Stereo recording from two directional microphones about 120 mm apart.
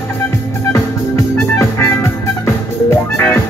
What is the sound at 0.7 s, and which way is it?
Music, 25° left (ahead or behind).